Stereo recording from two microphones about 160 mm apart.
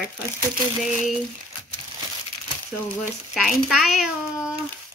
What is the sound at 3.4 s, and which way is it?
A woman's voice, centre (ahead or behind).